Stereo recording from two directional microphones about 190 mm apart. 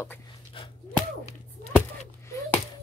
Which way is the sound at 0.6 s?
25° left (ahead or behind).